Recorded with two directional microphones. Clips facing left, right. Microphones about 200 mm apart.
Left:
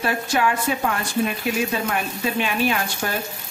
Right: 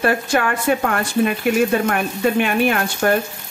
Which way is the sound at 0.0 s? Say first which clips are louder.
Right 3 dB; 55° right (ahead or behind).